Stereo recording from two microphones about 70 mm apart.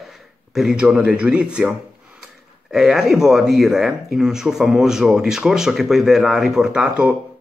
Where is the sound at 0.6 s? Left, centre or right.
Centre.